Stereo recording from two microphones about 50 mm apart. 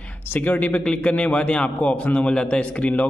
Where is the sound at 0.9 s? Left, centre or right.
Left.